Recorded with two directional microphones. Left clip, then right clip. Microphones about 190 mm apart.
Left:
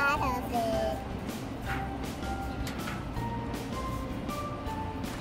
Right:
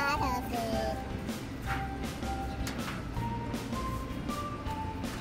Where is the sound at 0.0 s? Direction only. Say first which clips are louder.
Left 3 dB; 10° left (ahead or behind).